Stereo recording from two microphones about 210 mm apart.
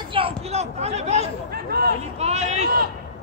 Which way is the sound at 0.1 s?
30° right (ahead or behind).